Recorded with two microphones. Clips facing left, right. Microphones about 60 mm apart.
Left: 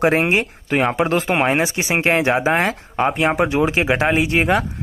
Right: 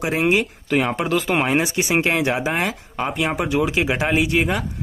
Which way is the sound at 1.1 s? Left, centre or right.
Left.